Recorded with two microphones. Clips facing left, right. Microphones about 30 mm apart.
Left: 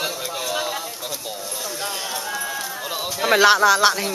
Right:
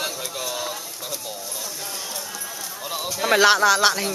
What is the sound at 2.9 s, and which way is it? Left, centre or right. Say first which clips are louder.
Speech: left 1 dB; centre.